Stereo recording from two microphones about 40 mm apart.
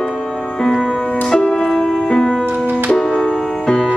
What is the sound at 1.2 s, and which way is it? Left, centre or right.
Music, centre.